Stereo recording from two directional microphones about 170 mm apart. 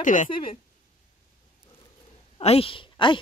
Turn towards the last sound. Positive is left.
turn(degrees=30)  # may be behind; listen again after turning